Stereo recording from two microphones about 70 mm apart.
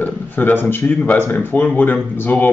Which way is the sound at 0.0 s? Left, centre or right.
Left.